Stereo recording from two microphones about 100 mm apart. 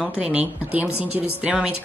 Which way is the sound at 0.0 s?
10° right (ahead or behind).